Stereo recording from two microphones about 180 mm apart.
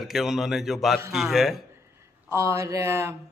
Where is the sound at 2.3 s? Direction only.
15° right (ahead or behind).